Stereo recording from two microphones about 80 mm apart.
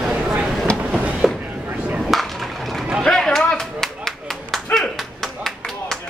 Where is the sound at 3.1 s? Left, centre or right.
Centre.